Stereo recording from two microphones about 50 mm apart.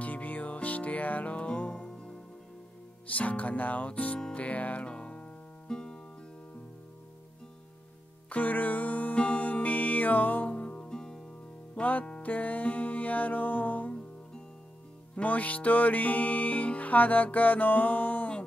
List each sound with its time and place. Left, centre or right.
0.0 s music: left; by 2.1 s centre
3.1 s music: left
4.9 s music: centre
8.3 s music: left; by 11.1 s centre
11.7 s music: left
15.1 s music: left